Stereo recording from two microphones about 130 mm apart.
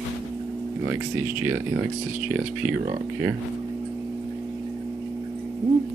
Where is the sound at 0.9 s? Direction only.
15° right (ahead or behind).